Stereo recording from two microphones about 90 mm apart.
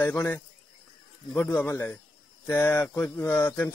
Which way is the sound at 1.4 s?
20° left (ahead or behind).